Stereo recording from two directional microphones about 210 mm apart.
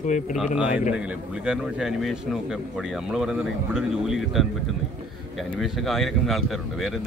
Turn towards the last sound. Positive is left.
turn(degrees=0)  # may be behind; listen again after turning